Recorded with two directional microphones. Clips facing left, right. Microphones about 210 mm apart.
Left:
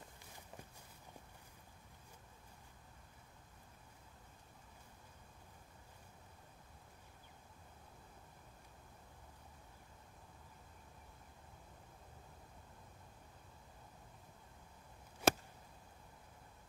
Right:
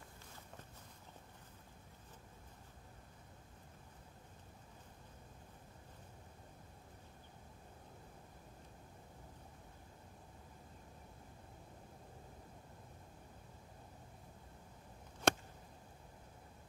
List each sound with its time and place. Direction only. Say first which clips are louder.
15.2 s chop: left 1 dB; 5° left (ahead or behind)